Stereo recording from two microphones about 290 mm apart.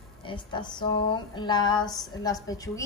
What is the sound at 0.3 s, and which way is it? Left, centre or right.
A woman's voice, centre.